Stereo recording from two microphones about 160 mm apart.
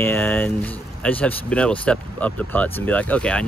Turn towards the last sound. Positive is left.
turn(degrees=5)  # may be behind; listen again after turning